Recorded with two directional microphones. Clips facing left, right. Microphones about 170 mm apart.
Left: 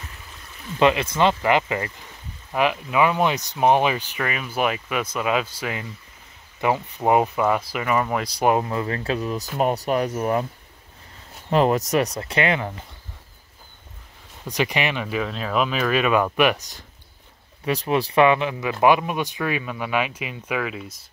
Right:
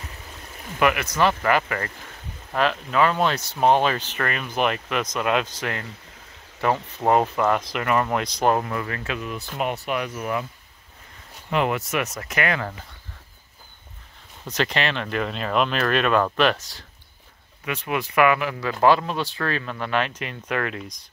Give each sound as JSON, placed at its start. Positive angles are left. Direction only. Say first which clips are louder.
{"t": 0.7, "sound": "speech", "louder": "left 2 dB", "side_deg": 25}
{"t": 8.6, "sound": "speech", "louder": "left 4 dB", "side_deg": 25}
{"t": 11.5, "sound": "speech", "louder": "left 5 dB", "side_deg": 35}
{"t": 14.4, "sound": "speech", "louder": "left 1 dB", "side_deg": 15}
{"t": 17.6, "sound": "speech", "louder": "left 5 dB", "side_deg": 35}